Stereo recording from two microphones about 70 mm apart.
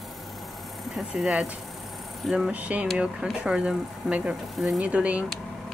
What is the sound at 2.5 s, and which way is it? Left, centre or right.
Speech, right.